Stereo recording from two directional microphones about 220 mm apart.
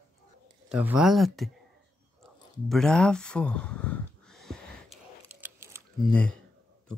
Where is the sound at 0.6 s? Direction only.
5° right (ahead or behind).